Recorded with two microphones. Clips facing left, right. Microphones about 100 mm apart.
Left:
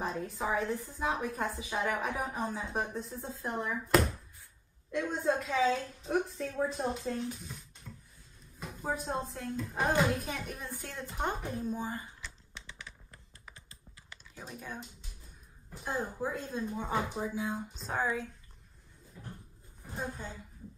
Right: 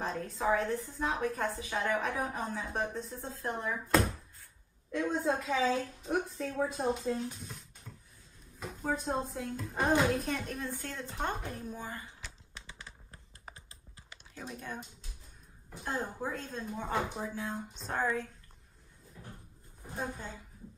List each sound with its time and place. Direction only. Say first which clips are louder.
0.0 s a woman's voice: right 2 dB; 5° left (ahead or behind)
4.9 s a woman's voice: even; centre (ahead or behind)
6.5 s speech: right 2 dB; 10° right (ahead or behind)
7.8 s a sound: left 3 dB; 10° right (ahead or behind)
8.8 s a woman's voice: right 1 dB; centre (ahead or behind); by 12.0 s 20° left (ahead or behind)
12.6 s typing: left 1 dB; 35° right (ahead or behind)
14.3 s a woman's voice: right 2 dB; 5° left (ahead or behind)